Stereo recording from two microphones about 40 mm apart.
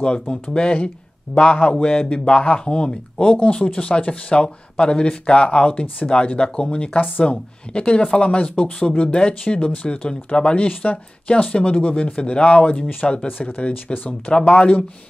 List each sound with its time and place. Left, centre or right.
0.0 s speech: left
8.4 s speech: left